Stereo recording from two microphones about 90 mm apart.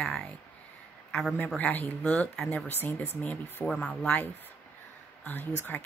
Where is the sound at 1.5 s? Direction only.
20° left (ahead or behind).